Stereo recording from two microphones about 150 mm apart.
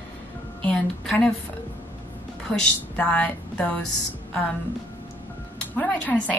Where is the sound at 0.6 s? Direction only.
10° left (ahead or behind).